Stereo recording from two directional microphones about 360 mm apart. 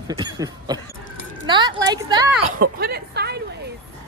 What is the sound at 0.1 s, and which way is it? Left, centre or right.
Speech, centre.